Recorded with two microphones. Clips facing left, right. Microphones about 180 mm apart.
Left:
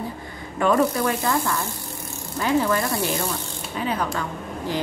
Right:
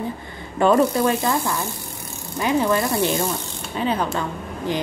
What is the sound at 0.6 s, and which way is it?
A woman's voice, 30° right (ahead or behind).